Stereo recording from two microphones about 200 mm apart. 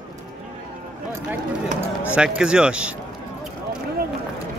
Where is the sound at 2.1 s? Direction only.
5° right (ahead or behind).